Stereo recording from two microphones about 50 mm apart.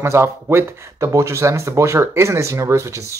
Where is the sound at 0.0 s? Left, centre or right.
Right.